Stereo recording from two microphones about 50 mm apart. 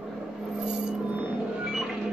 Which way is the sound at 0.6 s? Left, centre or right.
Centre.